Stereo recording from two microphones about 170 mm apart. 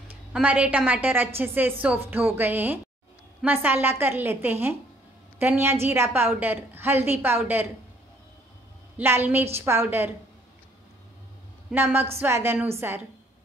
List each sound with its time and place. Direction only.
0.1 s a woman's voice: 10° right (ahead or behind)
8.9 s a woman's voice: 10° right (ahead or behind)
11.7 s a woman's voice: 15° right (ahead or behind)